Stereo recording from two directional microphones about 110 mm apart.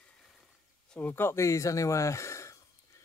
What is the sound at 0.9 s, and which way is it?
Speech, 15° left (ahead or behind).